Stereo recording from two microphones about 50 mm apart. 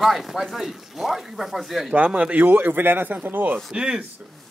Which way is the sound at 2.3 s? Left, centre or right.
Right.